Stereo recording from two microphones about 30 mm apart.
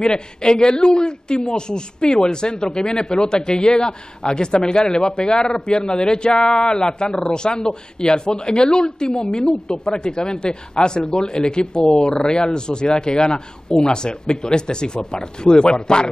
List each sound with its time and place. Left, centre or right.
0.0 s speech: left